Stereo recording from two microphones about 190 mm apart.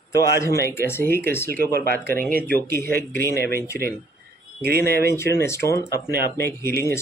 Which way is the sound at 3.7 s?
55° right (ahead or behind).